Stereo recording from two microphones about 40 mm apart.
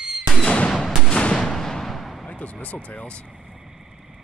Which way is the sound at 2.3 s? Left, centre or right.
Left.